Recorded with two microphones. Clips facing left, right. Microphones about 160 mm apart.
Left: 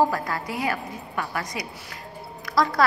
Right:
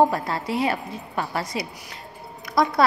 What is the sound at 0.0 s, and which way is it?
A woman's voice, 25° right (ahead or behind).